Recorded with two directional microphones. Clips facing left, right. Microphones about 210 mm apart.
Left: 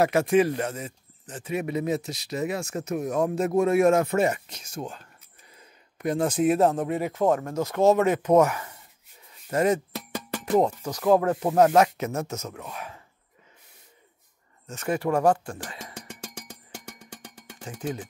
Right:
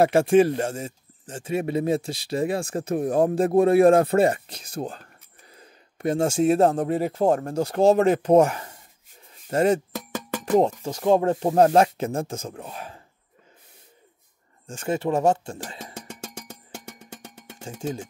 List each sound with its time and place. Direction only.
0.0 s speech: 30° right (ahead or behind)
14.7 s speech: 25° right (ahead or behind)
15.8 s drum: 55° right (ahead or behind)
17.6 s music: 25° right (ahead or behind)